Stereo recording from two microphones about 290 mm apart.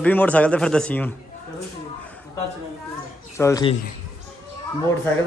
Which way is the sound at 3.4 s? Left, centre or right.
Centre.